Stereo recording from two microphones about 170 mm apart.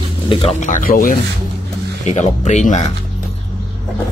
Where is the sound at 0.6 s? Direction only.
50° left (ahead or behind).